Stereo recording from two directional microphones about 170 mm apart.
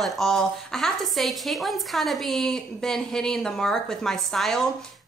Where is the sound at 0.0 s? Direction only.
Centre (ahead or behind).